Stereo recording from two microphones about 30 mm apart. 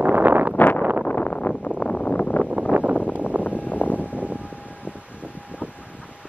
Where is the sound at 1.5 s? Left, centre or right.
Left.